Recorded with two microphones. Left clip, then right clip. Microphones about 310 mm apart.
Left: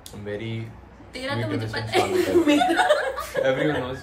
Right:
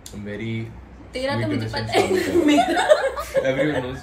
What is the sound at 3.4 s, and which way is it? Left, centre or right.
Speech, centre.